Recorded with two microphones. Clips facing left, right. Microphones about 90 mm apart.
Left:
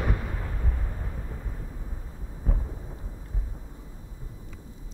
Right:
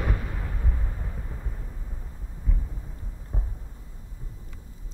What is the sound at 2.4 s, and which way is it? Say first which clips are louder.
Thunder: left 4 dB; 55° left (ahead or behind).